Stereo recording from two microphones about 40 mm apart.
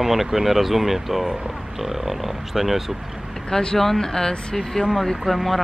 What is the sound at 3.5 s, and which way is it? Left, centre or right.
Speech, centre.